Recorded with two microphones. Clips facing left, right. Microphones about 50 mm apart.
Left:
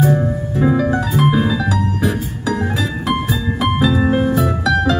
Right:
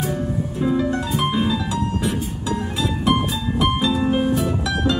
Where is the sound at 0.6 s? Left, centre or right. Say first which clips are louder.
Left 5 dB; left.